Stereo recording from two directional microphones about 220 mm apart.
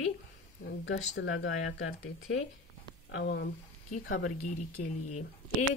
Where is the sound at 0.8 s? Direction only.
55° left (ahead or behind).